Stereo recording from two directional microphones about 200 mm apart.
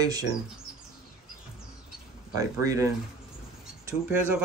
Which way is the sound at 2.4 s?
15° right (ahead or behind).